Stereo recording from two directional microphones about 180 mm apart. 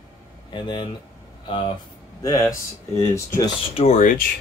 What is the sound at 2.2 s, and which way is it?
Speech, 20° left (ahead or behind).